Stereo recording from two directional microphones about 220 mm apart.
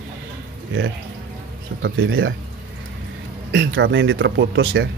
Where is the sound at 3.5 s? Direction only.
55° right (ahead or behind).